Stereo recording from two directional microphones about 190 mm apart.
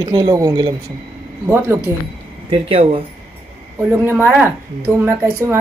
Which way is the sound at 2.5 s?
30° right (ahead or behind).